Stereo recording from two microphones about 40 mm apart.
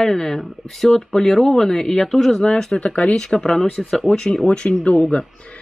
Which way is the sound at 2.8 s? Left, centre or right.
Left.